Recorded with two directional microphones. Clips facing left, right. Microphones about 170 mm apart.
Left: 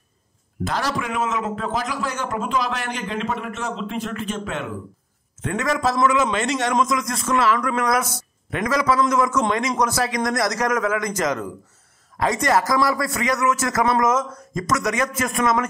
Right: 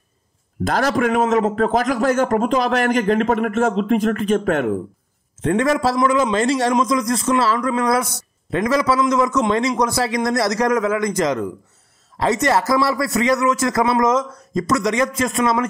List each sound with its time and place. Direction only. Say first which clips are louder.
0.7 s a man's voice: right 7 dB; 50° right (ahead or behind)
1.2 s a man's voice: right 7 dB; 35° right (ahead or behind)
1.5 s a man's voice: right 8 dB; 55° right (ahead or behind)
5.4 s a man's voice: right 5 dB; 30° right (ahead or behind)
12.2 s a man's voice: right 2 dB; 25° right (ahead or behind)